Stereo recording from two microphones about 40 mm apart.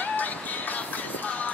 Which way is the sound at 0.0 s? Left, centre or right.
Left.